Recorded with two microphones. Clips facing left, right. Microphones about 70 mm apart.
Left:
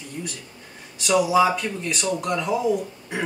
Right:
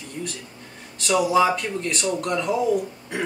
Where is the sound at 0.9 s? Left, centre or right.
Centre.